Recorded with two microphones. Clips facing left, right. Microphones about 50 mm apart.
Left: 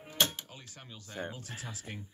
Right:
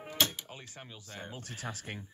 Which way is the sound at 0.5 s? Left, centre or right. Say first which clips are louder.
Right 3 dB; right.